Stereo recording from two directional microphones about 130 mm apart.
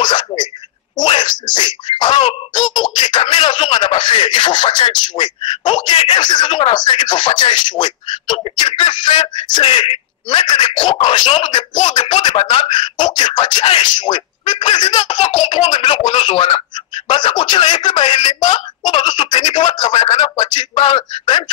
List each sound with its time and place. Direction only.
0.0 s a sound: 35° left (ahead or behind)
1.5 s throat clearing: 35° left (ahead or behind)
2.8 s speech: 35° left (ahead or behind)
15.3 s speech: 50° left (ahead or behind)
17.9 s speech: 50° left (ahead or behind)
18.9 s speech: 35° left (ahead or behind)